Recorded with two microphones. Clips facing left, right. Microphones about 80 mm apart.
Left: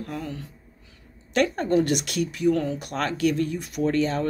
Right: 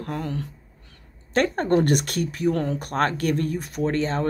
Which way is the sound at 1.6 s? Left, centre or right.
Right.